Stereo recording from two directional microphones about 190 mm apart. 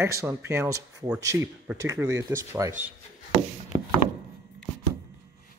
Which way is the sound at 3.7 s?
25° right (ahead or behind).